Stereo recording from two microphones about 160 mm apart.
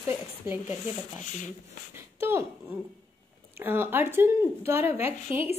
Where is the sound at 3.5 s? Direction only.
15° right (ahead or behind).